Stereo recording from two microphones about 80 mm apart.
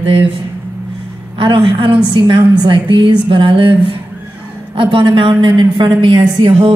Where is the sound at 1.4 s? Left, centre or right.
Right.